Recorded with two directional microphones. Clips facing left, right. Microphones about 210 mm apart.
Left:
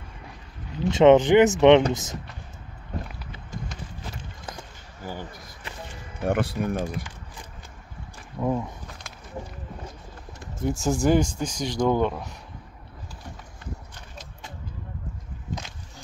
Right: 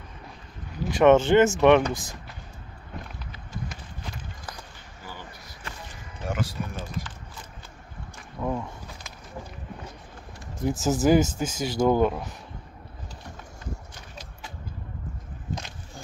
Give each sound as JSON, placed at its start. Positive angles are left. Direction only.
{"t": 0.8, "sound": "speech", "side_deg": 20}
{"t": 2.9, "sound": "a sound", "side_deg": 40}
{"t": 6.2, "sound": "speech", "side_deg": 60}
{"t": 8.4, "sound": "speech", "side_deg": 15}
{"t": 10.6, "sound": "speech", "side_deg": 0}